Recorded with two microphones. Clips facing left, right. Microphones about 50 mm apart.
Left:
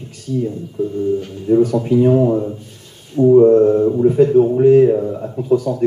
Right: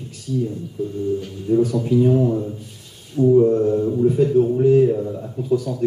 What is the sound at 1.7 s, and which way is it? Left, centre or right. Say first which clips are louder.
A man's voice: left 4 dB; left.